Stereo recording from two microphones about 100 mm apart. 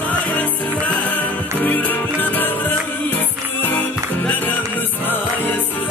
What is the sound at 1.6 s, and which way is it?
Music, 15° left (ahead or behind).